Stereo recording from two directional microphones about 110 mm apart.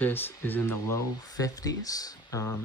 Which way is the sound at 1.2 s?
35° left (ahead or behind).